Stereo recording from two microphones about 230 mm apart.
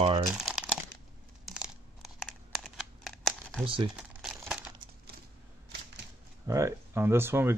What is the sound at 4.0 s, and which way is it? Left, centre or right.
Crumpling, centre.